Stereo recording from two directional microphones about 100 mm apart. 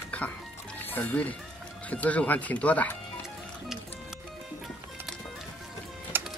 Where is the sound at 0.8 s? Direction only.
20° left (ahead or behind).